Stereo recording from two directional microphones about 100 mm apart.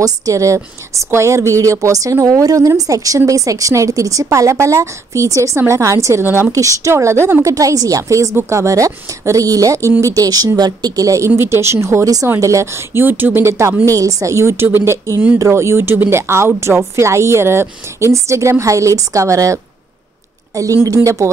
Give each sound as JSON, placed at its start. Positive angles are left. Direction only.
{"t": 0.0, "sound": "a woman's voice", "side_deg": -35}